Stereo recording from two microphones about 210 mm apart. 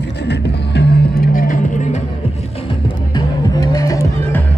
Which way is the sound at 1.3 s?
40° left (ahead or behind).